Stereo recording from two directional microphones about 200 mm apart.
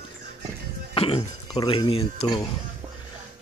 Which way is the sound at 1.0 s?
30° left (ahead or behind).